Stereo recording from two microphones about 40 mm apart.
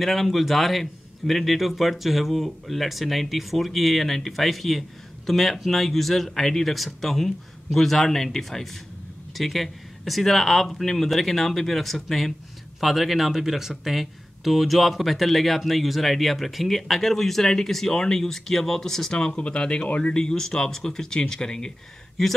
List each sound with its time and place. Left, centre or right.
0.0 s speech: centre
19.3 s speech: left